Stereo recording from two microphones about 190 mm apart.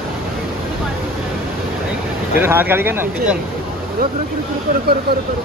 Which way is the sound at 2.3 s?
10° right (ahead or behind).